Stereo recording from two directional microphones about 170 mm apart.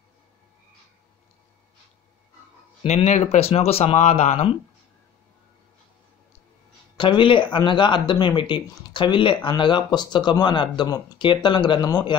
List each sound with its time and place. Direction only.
2.8 s speech: 35° left (ahead or behind)
7.0 s speech: 30° left (ahead or behind)